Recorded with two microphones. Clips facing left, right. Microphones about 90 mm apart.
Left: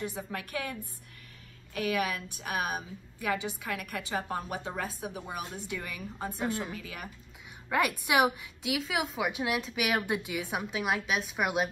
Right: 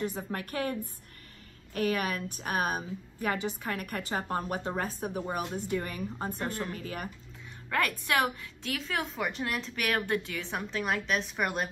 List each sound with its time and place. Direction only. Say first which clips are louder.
0.0 s a woman's voice: right 3 dB; 40° right (ahead or behind)
8.0 s a woman's voice: left 3 dB; 15° left (ahead or behind)